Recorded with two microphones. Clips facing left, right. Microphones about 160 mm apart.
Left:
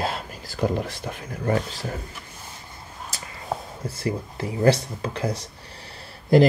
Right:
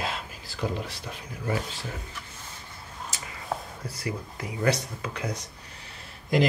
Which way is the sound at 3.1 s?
35° left (ahead or behind).